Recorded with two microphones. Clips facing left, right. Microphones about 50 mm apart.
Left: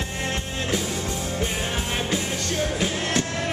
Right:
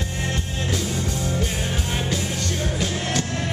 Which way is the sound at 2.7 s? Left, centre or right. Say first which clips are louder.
Left 1 dB; centre.